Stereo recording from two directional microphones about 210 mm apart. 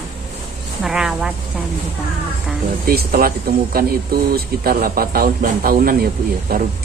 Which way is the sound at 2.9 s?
45° right (ahead or behind).